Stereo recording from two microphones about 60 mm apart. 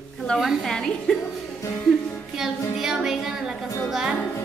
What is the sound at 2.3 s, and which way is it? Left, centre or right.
Child singing, centre.